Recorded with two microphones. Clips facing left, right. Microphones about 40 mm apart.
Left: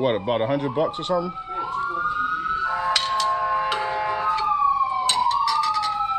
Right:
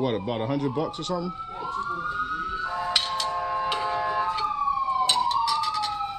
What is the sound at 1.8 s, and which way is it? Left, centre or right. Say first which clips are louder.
Police car: left 4 dB; centre.